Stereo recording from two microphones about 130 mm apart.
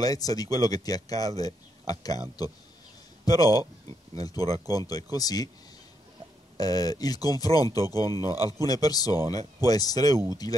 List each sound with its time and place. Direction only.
0.0 s speech: 30° left (ahead or behind)
3.3 s speech: 30° left (ahead or behind)
6.6 s speech: 30° left (ahead or behind)